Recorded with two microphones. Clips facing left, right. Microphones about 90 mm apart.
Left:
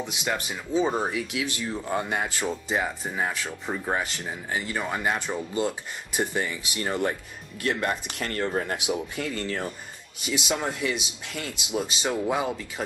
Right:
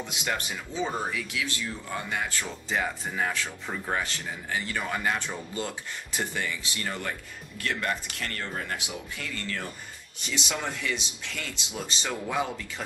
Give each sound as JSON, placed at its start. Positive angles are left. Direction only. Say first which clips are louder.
{"t": 0.0, "sound": "speech", "louder": "left 2 dB", "side_deg": 15}
{"t": 10.2, "sound": "speech", "louder": "left 4 dB", "side_deg": 15}